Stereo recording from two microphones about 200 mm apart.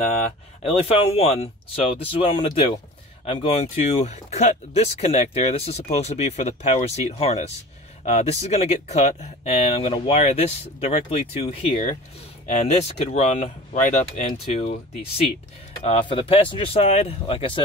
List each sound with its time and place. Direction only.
0.6 s speech: 30° left (ahead or behind)